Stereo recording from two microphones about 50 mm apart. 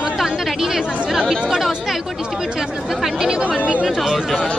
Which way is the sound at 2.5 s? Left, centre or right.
Centre.